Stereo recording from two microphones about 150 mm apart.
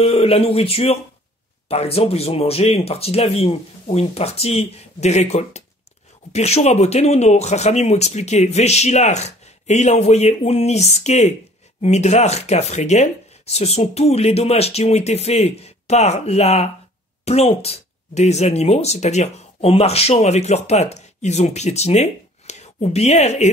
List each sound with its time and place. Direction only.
0.0 s speech: 40° left (ahead or behind)